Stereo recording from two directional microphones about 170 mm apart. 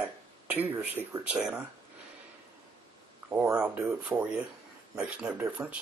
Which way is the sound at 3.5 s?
5° right (ahead or behind).